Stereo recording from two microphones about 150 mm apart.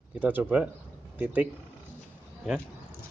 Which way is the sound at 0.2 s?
10° right (ahead or behind).